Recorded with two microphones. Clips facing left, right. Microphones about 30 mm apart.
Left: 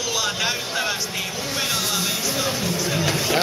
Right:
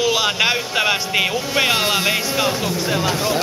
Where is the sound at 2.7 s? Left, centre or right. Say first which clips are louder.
Right 3 dB; right.